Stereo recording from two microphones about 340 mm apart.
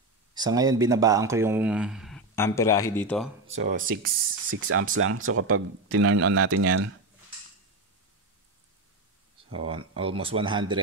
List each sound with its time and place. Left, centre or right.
0.3 s speech: centre
3.8 s speech: right
9.7 s speech: centre